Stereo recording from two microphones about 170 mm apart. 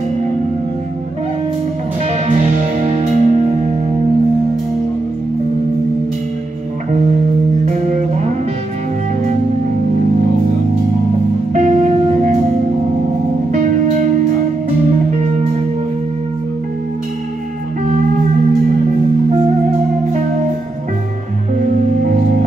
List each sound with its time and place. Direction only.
2.8 s music: 40° right (ahead or behind)
7.6 s music: 45° right (ahead or behind)
11.5 s music: 45° right (ahead or behind)
13.5 s music: 45° right (ahead or behind)